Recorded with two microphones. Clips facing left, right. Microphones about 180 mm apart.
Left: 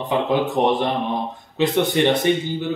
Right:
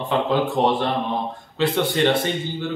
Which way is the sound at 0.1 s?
15° left (ahead or behind).